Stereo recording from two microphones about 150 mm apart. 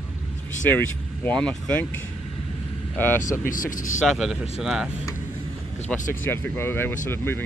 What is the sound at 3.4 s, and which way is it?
Speech, 65° left (ahead or behind).